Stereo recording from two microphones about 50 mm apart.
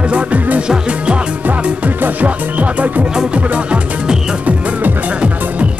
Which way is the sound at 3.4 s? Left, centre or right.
Right.